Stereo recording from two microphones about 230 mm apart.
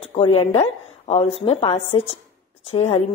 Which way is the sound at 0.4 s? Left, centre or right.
Left.